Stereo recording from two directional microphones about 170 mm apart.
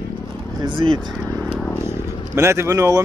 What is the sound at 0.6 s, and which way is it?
Speech, 30° right (ahead or behind).